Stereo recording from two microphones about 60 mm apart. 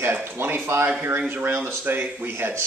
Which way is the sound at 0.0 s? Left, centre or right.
Right.